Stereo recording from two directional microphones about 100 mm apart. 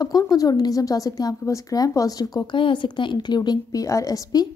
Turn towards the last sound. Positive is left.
turn(degrees=40)  # may be behind; listen again after turning